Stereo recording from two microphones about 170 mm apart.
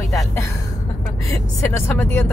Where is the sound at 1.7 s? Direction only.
15° left (ahead or behind).